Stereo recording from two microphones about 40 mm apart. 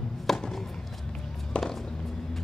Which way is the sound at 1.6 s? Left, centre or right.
Centre.